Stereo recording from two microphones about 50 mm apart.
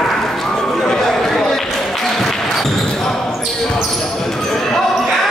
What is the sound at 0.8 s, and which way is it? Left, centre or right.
Basketball bounce, centre.